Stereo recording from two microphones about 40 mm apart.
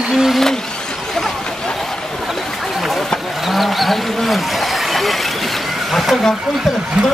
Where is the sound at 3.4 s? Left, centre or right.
Centre.